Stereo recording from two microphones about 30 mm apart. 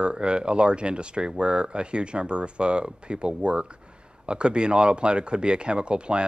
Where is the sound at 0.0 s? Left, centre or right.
Right.